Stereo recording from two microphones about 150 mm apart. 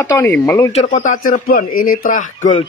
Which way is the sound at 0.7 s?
40° left (ahead or behind).